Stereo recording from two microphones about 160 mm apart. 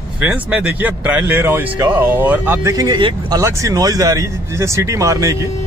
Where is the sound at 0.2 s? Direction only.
10° right (ahead or behind).